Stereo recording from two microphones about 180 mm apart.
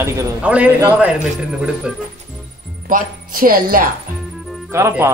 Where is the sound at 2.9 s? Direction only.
50° right (ahead or behind).